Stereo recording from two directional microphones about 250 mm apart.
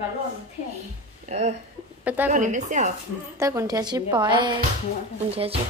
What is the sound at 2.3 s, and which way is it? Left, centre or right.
Speech, right.